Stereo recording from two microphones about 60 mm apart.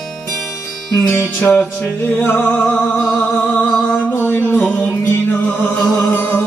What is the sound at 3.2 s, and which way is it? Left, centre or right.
Music, centre.